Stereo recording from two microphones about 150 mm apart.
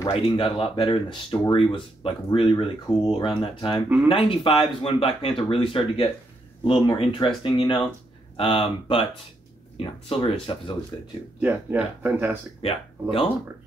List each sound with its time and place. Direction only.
0.1 s speech: 35° left (ahead or behind)
11.3 s speech: 10° right (ahead or behind)
12.6 s speech: 40° left (ahead or behind)